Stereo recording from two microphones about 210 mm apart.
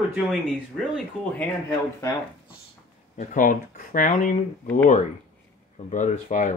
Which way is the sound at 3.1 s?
40° left (ahead or behind).